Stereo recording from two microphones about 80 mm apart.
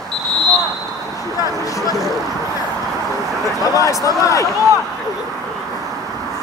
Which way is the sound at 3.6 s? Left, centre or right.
Left.